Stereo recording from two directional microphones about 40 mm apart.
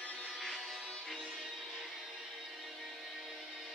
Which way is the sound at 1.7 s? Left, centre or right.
Centre.